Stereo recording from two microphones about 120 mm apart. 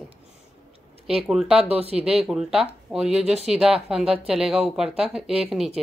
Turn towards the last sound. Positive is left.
turn(degrees=-5)  # may be behind; listen again after turning